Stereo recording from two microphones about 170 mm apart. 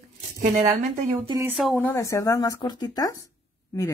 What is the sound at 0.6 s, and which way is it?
Speech, 20° right (ahead or behind).